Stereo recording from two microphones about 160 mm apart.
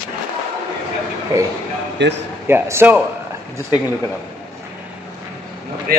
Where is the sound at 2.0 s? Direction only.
90° right.